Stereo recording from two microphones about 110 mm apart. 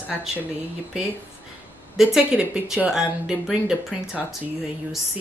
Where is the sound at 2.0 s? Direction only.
5° right (ahead or behind).